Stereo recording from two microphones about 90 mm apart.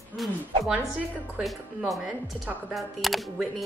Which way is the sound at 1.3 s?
5° right (ahead or behind).